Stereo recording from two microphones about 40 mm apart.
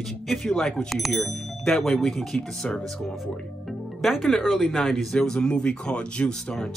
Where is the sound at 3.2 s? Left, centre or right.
Centre.